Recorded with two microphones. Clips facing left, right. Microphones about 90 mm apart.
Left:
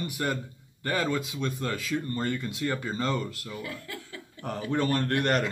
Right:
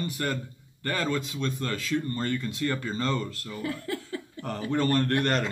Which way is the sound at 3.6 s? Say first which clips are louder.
Right 7 dB; 35° right (ahead or behind).